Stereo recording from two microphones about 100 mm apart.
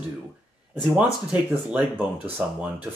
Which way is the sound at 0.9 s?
15° right (ahead or behind).